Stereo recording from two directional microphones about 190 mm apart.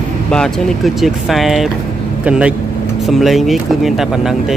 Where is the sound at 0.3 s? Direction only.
5° left (ahead or behind).